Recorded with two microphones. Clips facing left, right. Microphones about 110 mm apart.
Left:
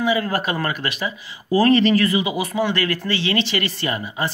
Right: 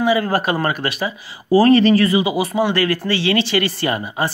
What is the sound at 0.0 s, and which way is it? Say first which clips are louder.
Speech: right 4 dB; 35° right (ahead or behind).